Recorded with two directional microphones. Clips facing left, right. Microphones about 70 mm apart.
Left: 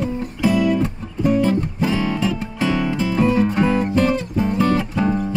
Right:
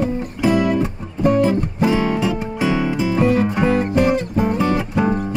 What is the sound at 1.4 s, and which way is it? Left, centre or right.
Music, centre.